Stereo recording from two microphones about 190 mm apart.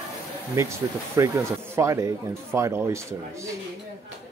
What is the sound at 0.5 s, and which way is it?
Speech, 15° right (ahead or behind).